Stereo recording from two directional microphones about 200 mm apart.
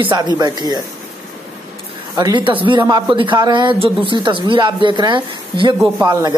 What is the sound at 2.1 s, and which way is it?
A woman's voice, 20° right (ahead or behind).